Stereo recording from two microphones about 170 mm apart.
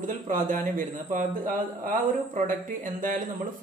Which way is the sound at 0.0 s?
50° right (ahead or behind).